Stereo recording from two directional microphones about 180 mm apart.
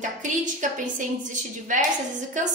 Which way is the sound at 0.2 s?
45° right (ahead or behind).